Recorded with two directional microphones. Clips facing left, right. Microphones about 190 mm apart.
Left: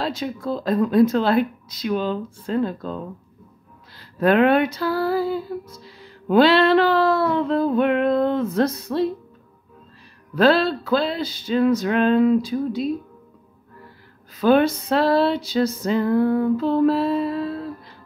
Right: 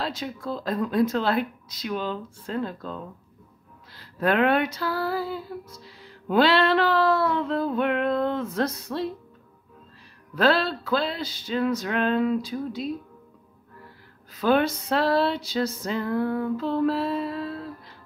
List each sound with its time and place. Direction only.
0.0 s speech: 20° left (ahead or behind)
4.2 s speech: 25° left (ahead or behind)
10.3 s speech: 20° left (ahead or behind)
14.4 s speech: 20° left (ahead or behind)